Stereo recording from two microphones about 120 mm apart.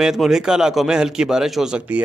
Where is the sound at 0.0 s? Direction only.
5° right (ahead or behind).